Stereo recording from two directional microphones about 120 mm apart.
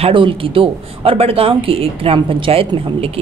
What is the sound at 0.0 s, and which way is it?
Speech, 45° right (ahead or behind).